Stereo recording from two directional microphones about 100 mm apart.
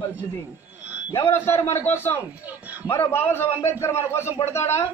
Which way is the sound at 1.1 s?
25° left (ahead or behind).